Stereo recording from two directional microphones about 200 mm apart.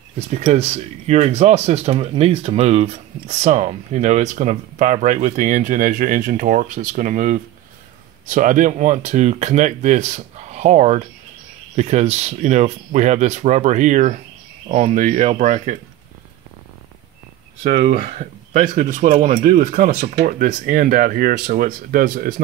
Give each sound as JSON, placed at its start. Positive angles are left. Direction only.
{"t": 0.3, "sound": "speech", "side_deg": -35}
{"t": 17.8, "sound": "speech", "side_deg": -40}